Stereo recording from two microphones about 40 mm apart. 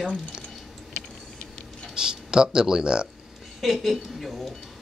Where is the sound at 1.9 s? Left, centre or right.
Centre.